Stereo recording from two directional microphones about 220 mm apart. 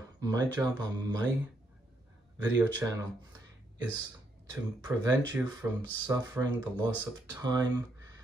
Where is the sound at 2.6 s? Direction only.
10° right (ahead or behind).